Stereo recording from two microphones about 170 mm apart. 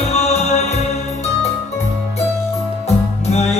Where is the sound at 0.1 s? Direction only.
40° left (ahead or behind).